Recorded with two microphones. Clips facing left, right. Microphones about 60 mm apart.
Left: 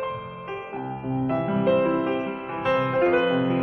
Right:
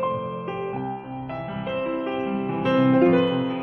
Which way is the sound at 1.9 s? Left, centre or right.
Centre.